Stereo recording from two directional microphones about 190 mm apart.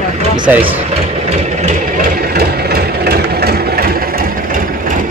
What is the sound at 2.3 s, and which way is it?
Engine, 55° right (ahead or behind).